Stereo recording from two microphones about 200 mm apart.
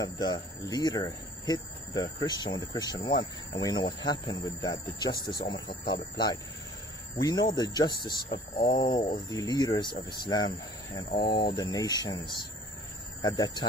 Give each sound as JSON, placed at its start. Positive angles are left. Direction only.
{"t": 0.7, "sound": "speech", "side_deg": 20}
{"t": 5.7, "sound": "speech", "side_deg": 50}
{"t": 6.1, "sound": "speech", "side_deg": 20}
{"t": 8.3, "sound": "speech", "side_deg": 45}
{"t": 9.3, "sound": "speech", "side_deg": 20}
{"t": 11.1, "sound": "speech", "side_deg": 50}
{"t": 11.5, "sound": "speech", "side_deg": 20}